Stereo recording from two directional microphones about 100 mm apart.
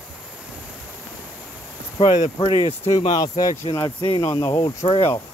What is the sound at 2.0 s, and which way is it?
Speech, 55° left (ahead or behind).